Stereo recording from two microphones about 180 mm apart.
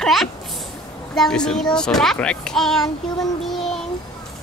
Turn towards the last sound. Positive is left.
turn(degrees=0)  # may be behind; listen again after turning